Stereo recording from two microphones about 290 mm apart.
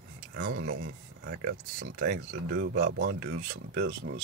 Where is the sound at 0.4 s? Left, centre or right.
Right.